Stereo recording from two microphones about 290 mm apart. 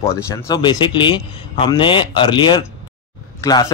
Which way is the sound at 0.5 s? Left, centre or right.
Centre.